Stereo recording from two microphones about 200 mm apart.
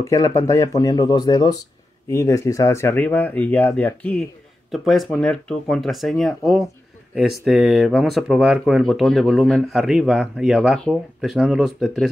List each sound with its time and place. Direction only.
0.0 s speech: 15° left (ahead or behind); by 12.1 s centre (ahead or behind)